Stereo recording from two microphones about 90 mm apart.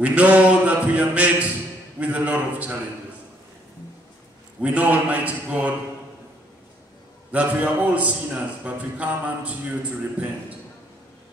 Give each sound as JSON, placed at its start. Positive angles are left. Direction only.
{"t": 0.0, "sound": "a man's voice", "side_deg": -15}
{"t": 4.6, "sound": "a man's voice", "side_deg": -15}
{"t": 7.3, "sound": "a man's voice", "side_deg": -15}